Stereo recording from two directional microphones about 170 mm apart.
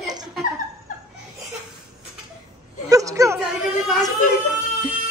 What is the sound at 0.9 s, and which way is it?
Laughter, 50° left (ahead or behind).